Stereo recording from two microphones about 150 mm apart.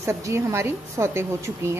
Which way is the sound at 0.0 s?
20° right (ahead or behind).